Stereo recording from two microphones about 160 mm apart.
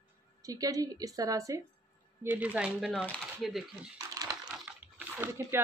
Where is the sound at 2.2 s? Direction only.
10° right (ahead or behind).